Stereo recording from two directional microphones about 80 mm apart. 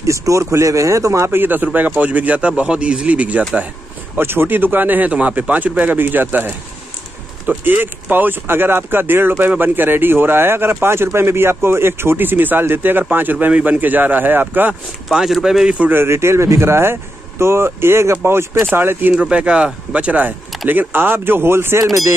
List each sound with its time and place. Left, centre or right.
0.0 s speech: right; by 3.6 s centre
4.2 s speech: right
15.1 s speech: centre
15.8 s speech: right
19.2 s speech: centre; by 21.7 s right